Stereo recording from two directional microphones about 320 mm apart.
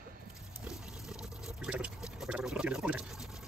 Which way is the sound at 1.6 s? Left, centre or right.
Centre.